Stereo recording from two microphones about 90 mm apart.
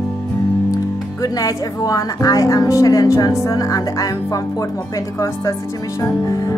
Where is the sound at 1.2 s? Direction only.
40° left (ahead or behind).